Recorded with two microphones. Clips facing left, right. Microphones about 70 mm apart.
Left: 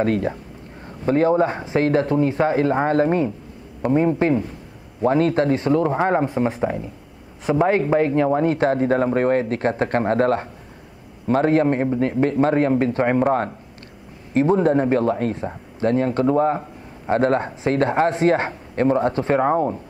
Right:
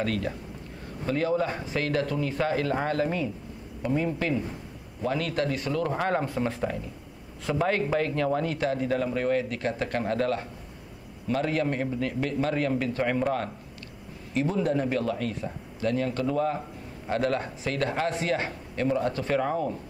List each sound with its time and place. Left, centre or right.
0.0 s speech: left